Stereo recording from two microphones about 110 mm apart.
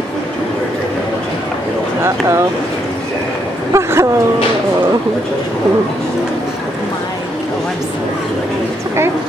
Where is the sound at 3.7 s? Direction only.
25° right (ahead or behind).